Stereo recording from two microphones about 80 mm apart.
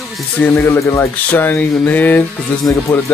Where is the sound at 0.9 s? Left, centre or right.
Left.